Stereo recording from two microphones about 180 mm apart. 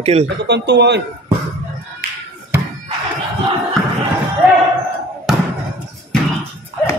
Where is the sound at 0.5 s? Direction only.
70° right (ahead or behind).